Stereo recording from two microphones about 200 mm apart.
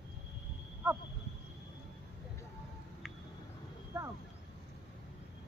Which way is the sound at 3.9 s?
15° right (ahead or behind).